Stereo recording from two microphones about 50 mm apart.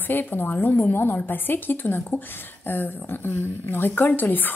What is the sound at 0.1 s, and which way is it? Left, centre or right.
A woman's voice, left.